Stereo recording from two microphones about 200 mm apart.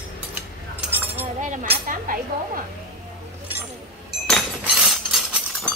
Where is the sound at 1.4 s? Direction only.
35° right (ahead or behind).